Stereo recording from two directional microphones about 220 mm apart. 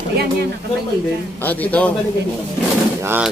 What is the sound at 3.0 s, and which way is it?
Speech, 10° right (ahead or behind).